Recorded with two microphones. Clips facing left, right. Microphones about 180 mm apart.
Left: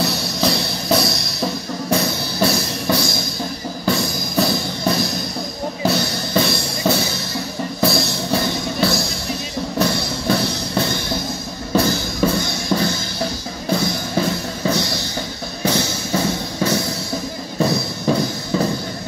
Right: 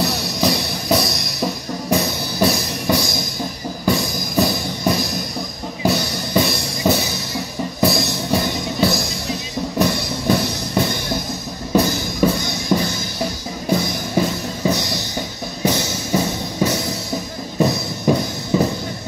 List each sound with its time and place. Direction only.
0.0 s music: 15° right (ahead or behind)